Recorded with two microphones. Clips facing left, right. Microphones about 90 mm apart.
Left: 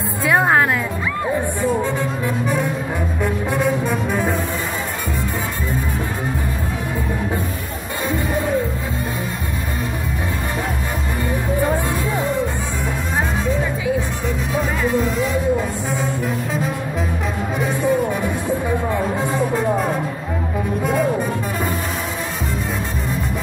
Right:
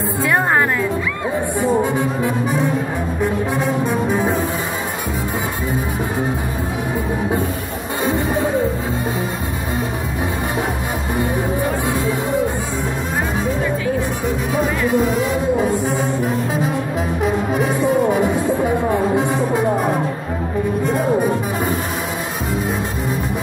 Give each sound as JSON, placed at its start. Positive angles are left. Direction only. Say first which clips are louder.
{"t": 0.3, "sound": "music", "louder": "left 2 dB", "side_deg": 15}
{"t": 1.6, "sound": "music", "louder": "right 3 dB", "side_deg": -15}
{"t": 3.5, "sound": "brass instrument", "louder": "right 1 dB", "side_deg": 0}
{"t": 8.0, "sound": "music", "louder": "right 3 dB", "side_deg": -20}
{"t": 17.8, "sound": "music", "louder": "right 3 dB", "side_deg": -20}